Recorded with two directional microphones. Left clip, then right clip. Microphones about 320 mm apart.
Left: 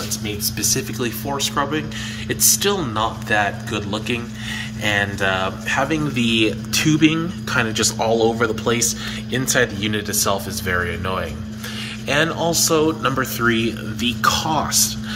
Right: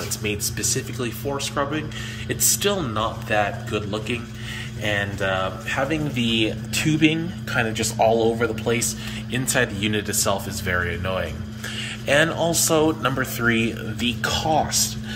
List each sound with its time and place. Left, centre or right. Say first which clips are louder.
0.6 s speech: left 4 dB; centre